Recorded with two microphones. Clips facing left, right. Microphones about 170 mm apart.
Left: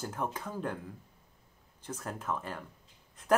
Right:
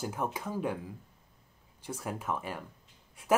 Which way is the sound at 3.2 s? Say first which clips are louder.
Even; 10° right (ahead or behind).